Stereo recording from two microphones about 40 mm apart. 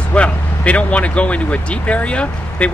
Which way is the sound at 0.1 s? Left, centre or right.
Left.